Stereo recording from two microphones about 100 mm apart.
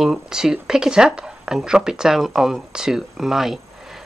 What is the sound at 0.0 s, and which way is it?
Speech, 5° right (ahead or behind).